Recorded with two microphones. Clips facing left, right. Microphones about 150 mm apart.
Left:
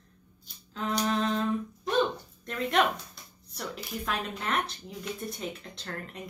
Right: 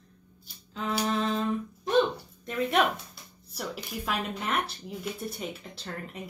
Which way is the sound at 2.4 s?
5° right (ahead or behind).